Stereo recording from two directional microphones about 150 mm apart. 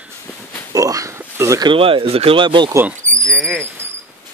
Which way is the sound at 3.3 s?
5° left (ahead or behind).